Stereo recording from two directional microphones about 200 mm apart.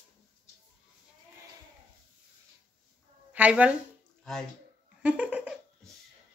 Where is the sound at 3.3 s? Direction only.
5° right (ahead or behind).